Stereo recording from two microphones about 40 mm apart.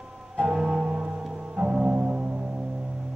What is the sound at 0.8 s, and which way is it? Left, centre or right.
Music, right.